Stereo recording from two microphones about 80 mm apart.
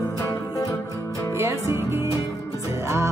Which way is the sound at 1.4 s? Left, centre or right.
Right.